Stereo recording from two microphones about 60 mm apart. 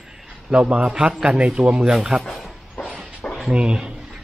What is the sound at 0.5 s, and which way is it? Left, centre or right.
A man's voice, right.